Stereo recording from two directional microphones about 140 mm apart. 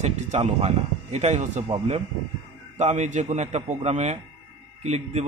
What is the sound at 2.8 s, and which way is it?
A man's voice, 55° right (ahead or behind).